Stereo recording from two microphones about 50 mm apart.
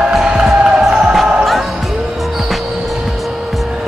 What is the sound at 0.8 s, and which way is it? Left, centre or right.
Music, centre.